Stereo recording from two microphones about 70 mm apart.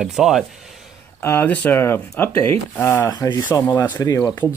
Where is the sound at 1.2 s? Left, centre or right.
Left.